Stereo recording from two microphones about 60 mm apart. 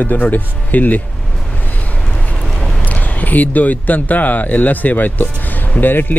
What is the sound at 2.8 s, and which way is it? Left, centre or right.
Speech, left.